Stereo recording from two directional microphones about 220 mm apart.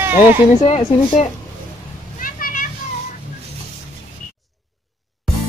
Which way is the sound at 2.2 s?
40° left (ahead or behind).